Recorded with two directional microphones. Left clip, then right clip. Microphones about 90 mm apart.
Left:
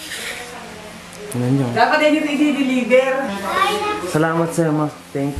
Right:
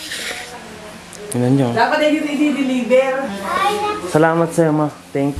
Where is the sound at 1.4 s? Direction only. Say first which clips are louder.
Right 4 dB; 25° right (ahead or behind).